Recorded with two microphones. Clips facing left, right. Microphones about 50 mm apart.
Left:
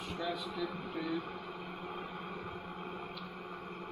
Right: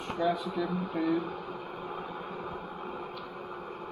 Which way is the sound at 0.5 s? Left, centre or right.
Right.